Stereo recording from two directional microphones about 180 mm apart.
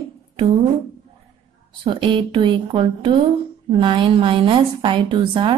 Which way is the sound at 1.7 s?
25° right (ahead or behind).